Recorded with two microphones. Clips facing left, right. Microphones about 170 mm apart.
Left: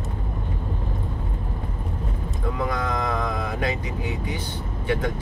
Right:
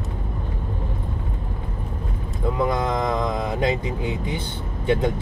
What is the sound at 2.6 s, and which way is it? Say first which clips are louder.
Vehicle: right 3 dB; 25° right (ahead or behind).